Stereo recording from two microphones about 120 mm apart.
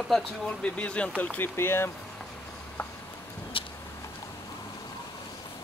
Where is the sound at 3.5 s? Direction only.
45° left (ahead or behind).